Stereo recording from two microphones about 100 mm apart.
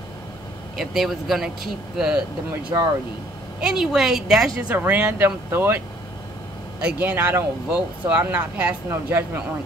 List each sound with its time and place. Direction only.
0.7 s a woman's voice: centre (ahead or behind)
2.7 s speech: 35° right (ahead or behind)
3.6 s a woman's voice: 5° right (ahead or behind)
4.6 s speech: 15° right (ahead or behind)
6.8 s speech: 10° right (ahead or behind)